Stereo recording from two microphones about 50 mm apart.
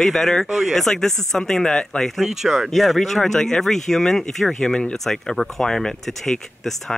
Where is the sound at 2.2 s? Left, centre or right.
Centre.